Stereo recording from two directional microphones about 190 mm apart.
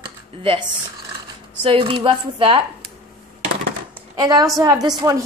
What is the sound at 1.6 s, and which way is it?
Speech, 25° right (ahead or behind).